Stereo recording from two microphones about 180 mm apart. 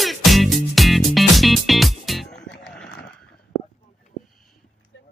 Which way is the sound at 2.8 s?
70° left (ahead or behind).